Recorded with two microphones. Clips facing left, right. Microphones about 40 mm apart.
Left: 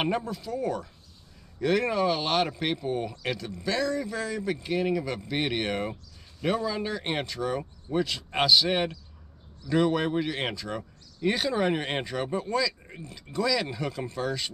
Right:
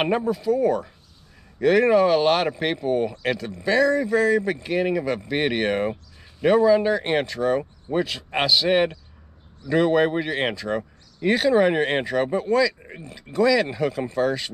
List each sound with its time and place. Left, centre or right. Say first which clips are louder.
0.0 s speech: right 7 dB; centre